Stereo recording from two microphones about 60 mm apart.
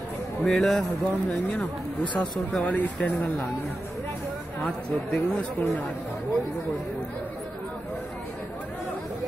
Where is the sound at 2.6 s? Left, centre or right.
Centre.